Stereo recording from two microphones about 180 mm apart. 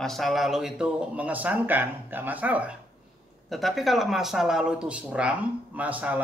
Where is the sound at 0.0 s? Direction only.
Centre (ahead or behind).